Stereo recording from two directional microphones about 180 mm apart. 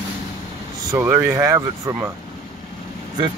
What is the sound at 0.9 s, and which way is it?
Speech, 15° right (ahead or behind).